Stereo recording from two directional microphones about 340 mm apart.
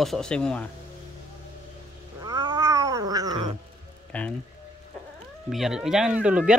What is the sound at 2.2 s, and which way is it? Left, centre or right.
Cat, centre.